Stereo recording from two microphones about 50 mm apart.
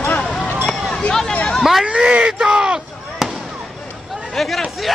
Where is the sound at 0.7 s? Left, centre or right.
Centre.